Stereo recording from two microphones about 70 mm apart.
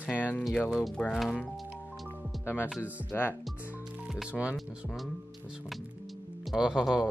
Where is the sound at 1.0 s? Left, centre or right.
Centre.